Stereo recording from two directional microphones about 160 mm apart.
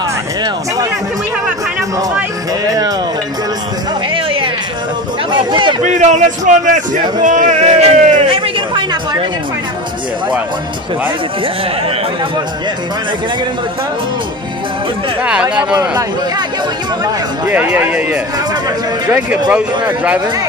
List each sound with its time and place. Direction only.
2.6 s music: 20° right (ahead or behind)
4.1 s music: 35° right (ahead or behind)
5.5 s a man's voice: 30° right (ahead or behind)
5.9 s a man's voice: 50° right (ahead or behind)
15.2 s speech: 10° right (ahead or behind)
17.5 s speech: 10° right (ahead or behind)